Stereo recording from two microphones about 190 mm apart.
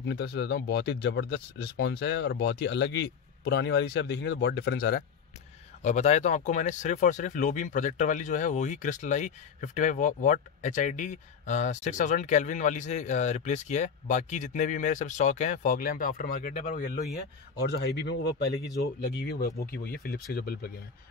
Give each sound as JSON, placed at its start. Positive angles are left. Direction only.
{"t": 0.0, "sound": "speech", "side_deg": 65}
{"t": 5.8, "sound": "speech", "side_deg": 35}
{"t": 17.6, "sound": "speech", "side_deg": 60}